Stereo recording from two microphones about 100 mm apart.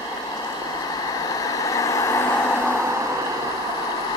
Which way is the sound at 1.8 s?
35° left (ahead or behind).